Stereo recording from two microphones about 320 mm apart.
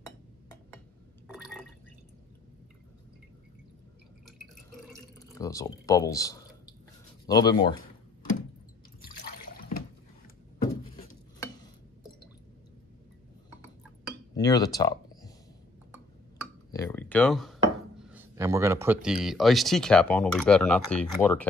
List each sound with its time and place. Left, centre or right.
1.2 s water: centre
5.4 s speech: centre
9.0 s water: left
14.3 s a sound: centre
16.7 s a sound: centre
18.1 s speech: centre